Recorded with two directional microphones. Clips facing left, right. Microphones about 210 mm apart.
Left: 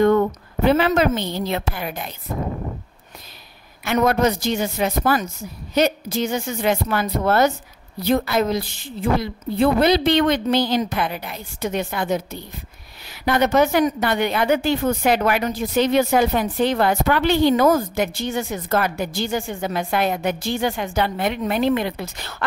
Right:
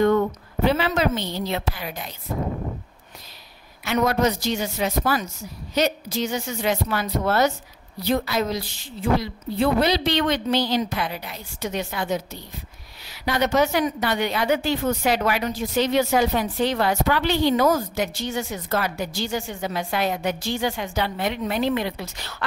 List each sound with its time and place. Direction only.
0.7 s a woman's voice: 55° left (ahead or behind)
3.8 s a woman's voice: 55° left (ahead or behind)